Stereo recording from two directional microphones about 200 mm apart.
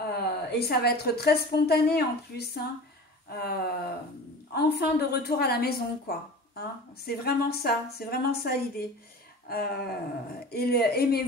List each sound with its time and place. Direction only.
0.1 s a woman's voice: 50° left (ahead or behind)